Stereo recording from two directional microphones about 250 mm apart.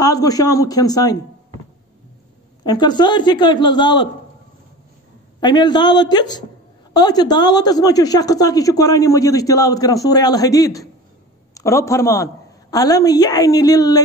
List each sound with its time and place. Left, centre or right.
0.0 s a woman's voice: centre
2.6 s a woman's voice: centre
5.4 s a woman's voice: centre